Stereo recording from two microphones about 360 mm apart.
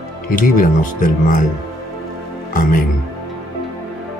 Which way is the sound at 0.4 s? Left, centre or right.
Left.